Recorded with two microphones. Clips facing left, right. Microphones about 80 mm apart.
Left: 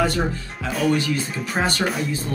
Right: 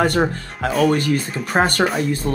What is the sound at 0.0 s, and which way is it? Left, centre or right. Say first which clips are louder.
Speech: right 4 dB; right.